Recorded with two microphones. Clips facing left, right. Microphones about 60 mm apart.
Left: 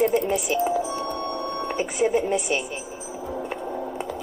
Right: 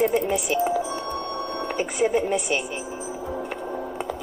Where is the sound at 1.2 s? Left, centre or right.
Left.